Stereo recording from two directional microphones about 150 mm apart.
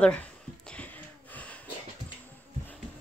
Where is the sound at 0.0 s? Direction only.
5° left (ahead or behind).